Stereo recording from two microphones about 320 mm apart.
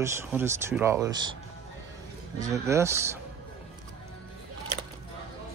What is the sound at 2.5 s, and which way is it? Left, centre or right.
Speech, centre.